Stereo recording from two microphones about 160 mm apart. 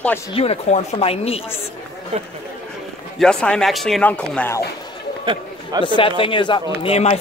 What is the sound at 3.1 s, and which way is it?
Speech, 5° left (ahead or behind).